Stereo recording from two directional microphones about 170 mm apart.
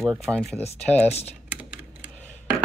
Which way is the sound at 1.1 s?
40° left (ahead or behind).